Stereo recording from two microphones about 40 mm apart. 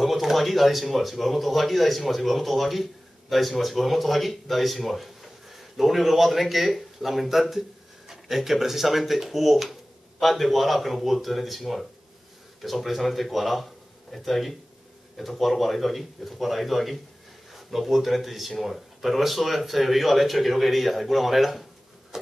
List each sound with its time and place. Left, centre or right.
0.0 s speech: centre
22.1 s insect: centre